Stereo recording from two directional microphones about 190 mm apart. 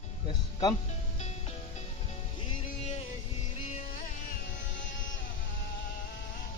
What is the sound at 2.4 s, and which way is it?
Music, 30° left (ahead or behind).